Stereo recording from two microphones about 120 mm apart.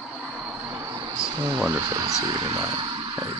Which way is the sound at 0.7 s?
35° right (ahead or behind).